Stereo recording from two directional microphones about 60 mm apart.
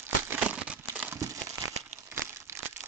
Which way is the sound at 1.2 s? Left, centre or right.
Right.